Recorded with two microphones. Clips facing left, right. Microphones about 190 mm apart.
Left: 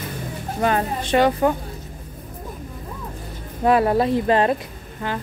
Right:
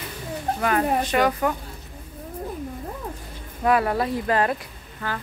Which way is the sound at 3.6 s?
25° left (ahead or behind).